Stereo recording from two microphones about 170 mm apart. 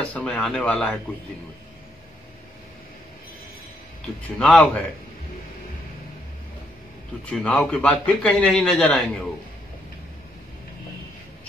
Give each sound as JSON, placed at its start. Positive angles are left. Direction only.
{"t": 0.0, "sound": "speech", "side_deg": 10}
{"t": 4.4, "sound": "a man's voice", "side_deg": 5}
{"t": 7.2, "sound": "a man's voice", "side_deg": 5}